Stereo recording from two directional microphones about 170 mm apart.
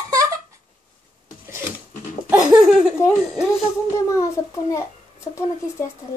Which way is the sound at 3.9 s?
20° left (ahead or behind).